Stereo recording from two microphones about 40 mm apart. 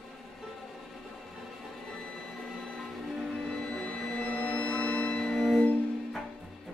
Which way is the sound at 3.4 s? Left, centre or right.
Centre.